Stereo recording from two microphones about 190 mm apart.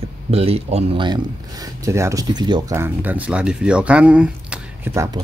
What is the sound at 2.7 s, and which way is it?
Speech, 10° right (ahead or behind).